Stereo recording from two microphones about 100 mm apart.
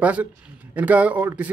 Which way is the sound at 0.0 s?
15° right (ahead or behind).